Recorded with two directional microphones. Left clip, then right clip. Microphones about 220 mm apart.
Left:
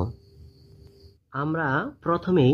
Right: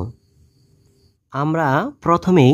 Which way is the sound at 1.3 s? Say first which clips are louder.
Right 7 dB; 50° right (ahead or behind).